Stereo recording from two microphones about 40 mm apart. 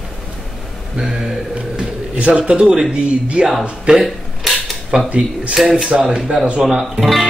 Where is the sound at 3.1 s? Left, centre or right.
Right.